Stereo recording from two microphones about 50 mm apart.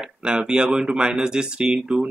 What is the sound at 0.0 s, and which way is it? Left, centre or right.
A man's voice, centre.